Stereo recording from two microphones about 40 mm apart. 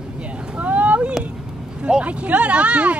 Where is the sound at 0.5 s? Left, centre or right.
Right.